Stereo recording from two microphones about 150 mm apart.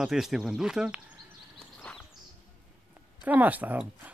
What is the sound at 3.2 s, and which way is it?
Speech, 10° right (ahead or behind).